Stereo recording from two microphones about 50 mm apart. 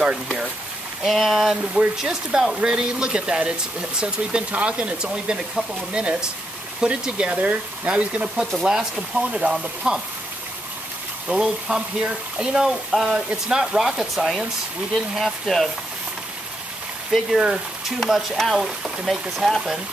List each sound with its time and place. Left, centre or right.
1.0 s speech: centre; by 8.5 s right
8.6 s speech: centre
9.5 s speech: centre
11.2 s speech: centre
17.1 s speech: centre